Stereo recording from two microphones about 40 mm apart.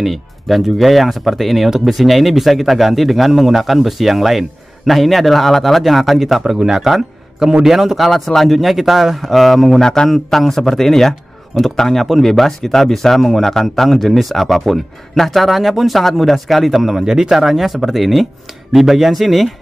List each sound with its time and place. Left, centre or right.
0.0 s speech: centre
8.0 s a man's voice: centre
8.5 s speech: centre
9.8 s a man's voice: centre
10.0 s a man's voice: centre